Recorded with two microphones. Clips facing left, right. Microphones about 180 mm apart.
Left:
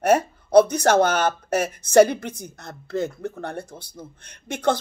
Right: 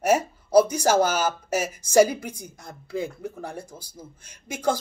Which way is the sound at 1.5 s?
60° left (ahead or behind).